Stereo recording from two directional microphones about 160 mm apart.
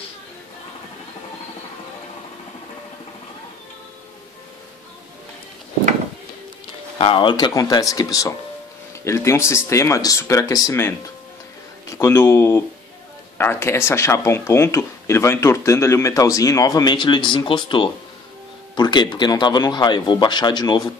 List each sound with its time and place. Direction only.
7.0 s speech: 35° left (ahead or behind)